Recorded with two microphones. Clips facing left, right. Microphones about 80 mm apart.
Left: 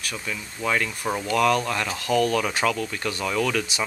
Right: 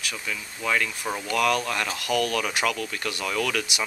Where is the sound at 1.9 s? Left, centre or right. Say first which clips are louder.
Left 5 dB; left.